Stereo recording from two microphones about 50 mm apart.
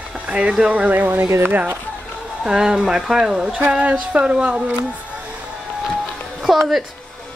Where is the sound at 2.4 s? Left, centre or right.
Centre.